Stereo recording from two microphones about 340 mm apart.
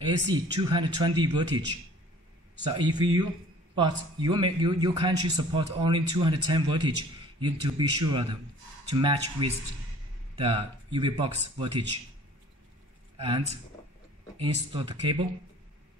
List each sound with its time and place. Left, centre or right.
0.3 s a man's voice: centre
13.2 s a man's voice: centre